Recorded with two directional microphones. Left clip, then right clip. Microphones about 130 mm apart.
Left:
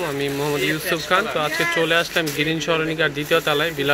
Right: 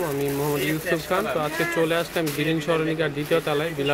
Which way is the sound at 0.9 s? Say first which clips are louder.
Left 3 dB; 5° right (ahead or behind).